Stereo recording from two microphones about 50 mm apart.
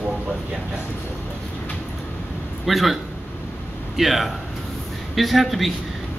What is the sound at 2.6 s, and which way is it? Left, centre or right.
A man's voice, centre.